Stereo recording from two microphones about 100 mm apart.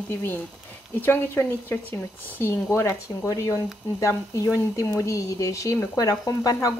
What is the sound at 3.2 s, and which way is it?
Speech, 35° left (ahead or behind).